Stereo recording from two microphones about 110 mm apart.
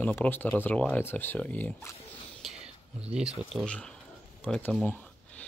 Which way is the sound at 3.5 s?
10° right (ahead or behind).